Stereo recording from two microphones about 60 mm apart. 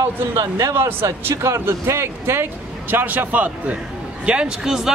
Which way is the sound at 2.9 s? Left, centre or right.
Right.